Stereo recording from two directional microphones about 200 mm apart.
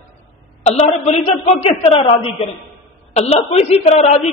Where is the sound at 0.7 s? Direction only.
30° left (ahead or behind).